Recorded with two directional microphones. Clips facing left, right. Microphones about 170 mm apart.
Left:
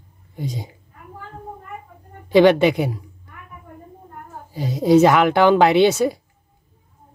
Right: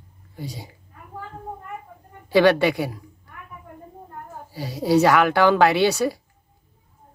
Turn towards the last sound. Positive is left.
turn(degrees=20)  # may be behind; listen again after turning